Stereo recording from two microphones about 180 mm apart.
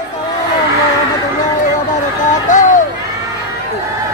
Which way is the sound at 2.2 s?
45° left (ahead or behind).